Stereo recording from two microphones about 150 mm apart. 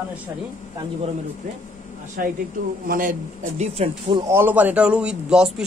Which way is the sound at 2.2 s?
80° right.